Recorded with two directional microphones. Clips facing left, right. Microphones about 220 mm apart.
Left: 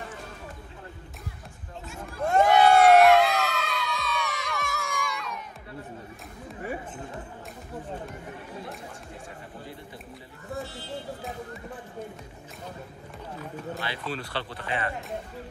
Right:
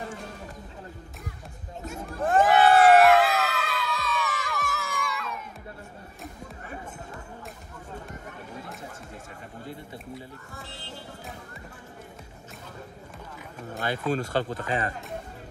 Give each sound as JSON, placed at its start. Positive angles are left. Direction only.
{"t": 2.2, "sound": "music", "side_deg": 0}
{"t": 13.7, "sound": "speech", "side_deg": -45}